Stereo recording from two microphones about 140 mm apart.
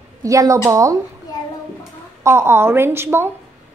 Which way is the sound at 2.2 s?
20° right (ahead or behind).